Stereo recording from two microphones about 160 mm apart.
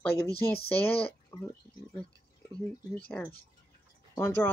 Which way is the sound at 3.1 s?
10° left (ahead or behind).